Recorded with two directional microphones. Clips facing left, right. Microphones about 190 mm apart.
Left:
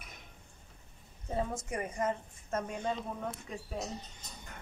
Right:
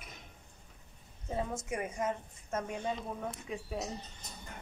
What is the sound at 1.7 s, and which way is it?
Speech, 5° right (ahead or behind).